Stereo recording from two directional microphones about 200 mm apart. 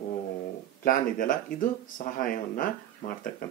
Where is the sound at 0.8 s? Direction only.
45° left (ahead or behind).